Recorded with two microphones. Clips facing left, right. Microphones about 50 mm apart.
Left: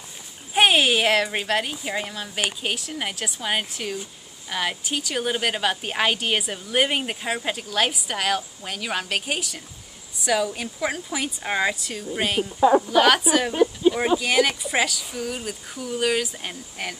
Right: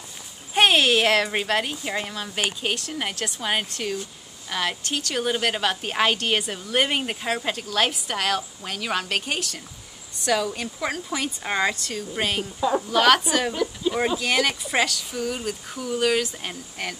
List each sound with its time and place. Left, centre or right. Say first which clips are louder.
0.6 s a woman's voice: even; centre
12.5 s speech: left 7 dB; left
12.8 s a woman's voice: left 1 dB; centre
13.5 s a sound: left 6 dB; left
14.0 s a woman's voice: left 2 dB; centre